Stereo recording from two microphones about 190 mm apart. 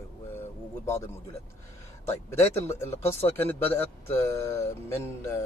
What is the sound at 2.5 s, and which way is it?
Speech, 15° left (ahead or behind).